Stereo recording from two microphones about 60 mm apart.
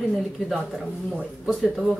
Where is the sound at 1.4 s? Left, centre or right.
Centre.